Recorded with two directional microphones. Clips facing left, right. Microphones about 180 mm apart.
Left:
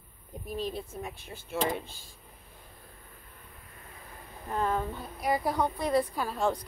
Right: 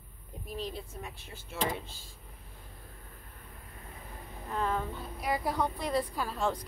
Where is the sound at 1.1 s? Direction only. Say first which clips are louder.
Left 7 dB; 55° left (ahead or behind).